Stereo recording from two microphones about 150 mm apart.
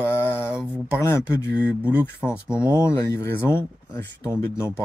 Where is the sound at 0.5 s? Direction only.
5° right (ahead or behind).